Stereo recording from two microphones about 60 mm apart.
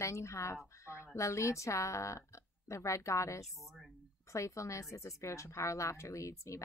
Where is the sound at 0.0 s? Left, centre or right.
Left.